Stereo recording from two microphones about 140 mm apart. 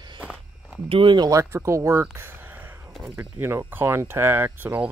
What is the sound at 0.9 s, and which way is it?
Speech, 35° right (ahead or behind).